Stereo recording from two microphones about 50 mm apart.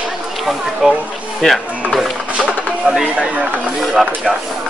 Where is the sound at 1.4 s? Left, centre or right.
Centre.